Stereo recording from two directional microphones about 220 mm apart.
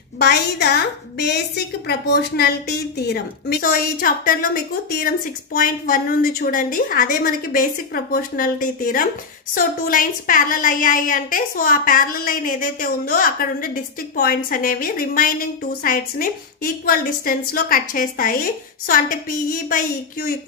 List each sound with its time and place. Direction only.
0.2 s a woman's voice: 45° left (ahead or behind)